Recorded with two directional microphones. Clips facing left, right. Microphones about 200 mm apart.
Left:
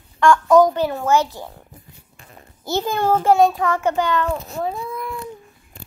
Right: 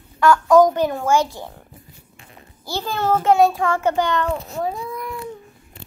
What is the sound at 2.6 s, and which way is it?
Speech, 20° left (ahead or behind).